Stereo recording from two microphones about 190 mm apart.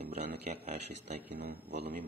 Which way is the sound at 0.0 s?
35° right (ahead or behind).